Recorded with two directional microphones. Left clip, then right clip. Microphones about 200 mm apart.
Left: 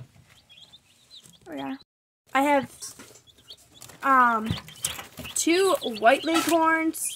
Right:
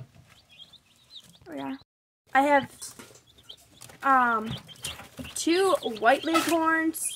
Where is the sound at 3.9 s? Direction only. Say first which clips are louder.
Left 2 dB; 15° left (ahead or behind).